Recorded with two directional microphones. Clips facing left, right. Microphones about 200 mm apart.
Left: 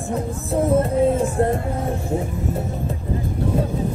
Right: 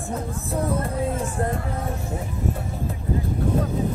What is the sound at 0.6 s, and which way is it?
Music, 25° left (ahead or behind).